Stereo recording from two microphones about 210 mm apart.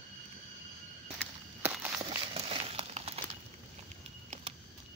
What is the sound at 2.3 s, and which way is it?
Crumpling, 30° right (ahead or behind).